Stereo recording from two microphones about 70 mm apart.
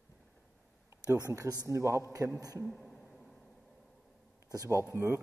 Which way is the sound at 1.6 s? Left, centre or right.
Right.